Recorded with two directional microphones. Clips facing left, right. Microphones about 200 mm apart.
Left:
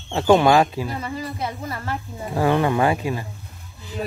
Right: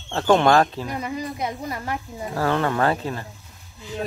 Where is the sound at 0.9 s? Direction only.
15° right (ahead or behind).